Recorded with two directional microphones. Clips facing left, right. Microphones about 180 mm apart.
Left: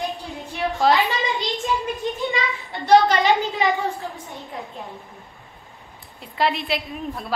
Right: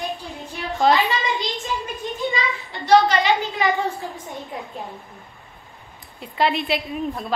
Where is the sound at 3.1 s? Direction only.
45° left (ahead or behind).